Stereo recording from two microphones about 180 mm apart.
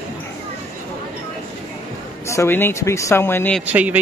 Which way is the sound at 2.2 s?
15° left (ahead or behind).